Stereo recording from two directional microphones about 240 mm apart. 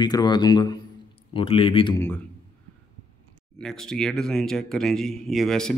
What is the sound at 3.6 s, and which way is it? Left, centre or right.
Speech, centre.